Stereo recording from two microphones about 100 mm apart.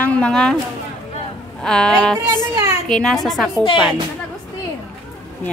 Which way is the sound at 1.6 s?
5° left (ahead or behind).